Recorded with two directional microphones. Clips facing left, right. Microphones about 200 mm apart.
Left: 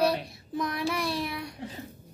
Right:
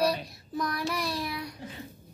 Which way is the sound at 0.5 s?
25° left (ahead or behind).